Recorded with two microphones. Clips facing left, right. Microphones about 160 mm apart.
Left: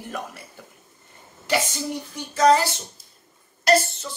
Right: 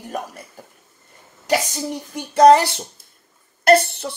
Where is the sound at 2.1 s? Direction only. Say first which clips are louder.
Right 7 dB; 65° right (ahead or behind).